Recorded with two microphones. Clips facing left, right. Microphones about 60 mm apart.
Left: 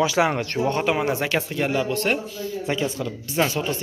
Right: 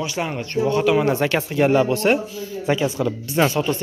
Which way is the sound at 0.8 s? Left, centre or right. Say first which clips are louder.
Right 4 dB; centre.